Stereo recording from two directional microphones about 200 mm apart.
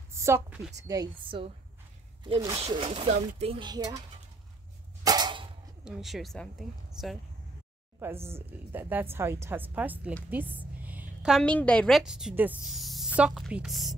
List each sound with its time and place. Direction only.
0.1 s speech: 15° right (ahead or behind)
5.0 s a sound: 20° right (ahead or behind)
5.9 s speech: centre (ahead or behind)
8.3 s a woman's voice: 10° right (ahead or behind)